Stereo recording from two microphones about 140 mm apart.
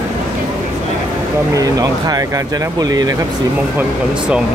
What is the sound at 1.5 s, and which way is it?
Speech, 25° right (ahead or behind).